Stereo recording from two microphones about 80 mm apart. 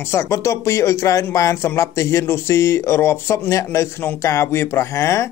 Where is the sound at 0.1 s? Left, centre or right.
Left.